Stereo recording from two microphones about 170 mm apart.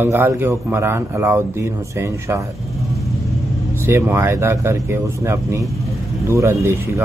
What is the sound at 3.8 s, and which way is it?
Speech, 15° right (ahead or behind).